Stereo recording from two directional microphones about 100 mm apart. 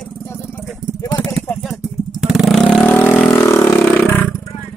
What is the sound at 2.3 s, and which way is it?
Vehicle, 5° right (ahead or behind).